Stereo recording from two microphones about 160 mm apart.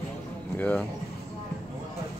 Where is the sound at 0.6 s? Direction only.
10° left (ahead or behind).